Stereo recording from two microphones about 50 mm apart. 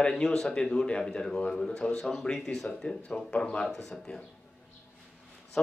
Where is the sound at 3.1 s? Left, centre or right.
Left.